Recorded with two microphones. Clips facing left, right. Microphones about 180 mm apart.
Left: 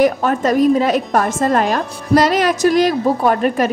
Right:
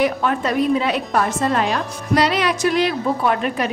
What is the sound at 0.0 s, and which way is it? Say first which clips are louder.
A woman's voice: left 5 dB; 45° left (ahead or behind).